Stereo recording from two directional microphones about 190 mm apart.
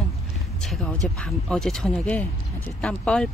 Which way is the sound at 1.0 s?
5° left (ahead or behind).